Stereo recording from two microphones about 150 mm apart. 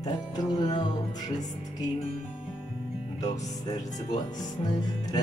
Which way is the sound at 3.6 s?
25° left (ahead or behind).